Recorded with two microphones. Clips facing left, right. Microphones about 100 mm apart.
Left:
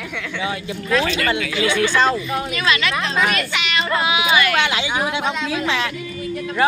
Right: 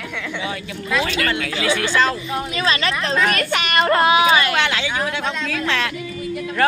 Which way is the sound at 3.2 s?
45° right (ahead or behind).